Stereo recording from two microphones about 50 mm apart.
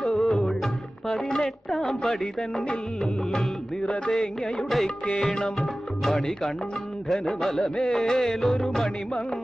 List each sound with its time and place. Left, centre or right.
0.0 s music: centre
1.9 s speech: centre
3.0 s music: centre
3.8 s music: left
4.1 s music: centre
7.6 s speech: centre
7.9 s music: centre